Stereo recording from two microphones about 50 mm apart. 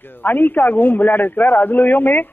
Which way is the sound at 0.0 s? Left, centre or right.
Left.